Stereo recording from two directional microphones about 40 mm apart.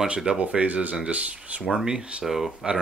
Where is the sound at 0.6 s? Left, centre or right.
Right.